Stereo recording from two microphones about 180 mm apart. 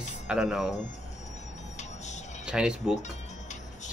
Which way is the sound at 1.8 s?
40° left (ahead or behind).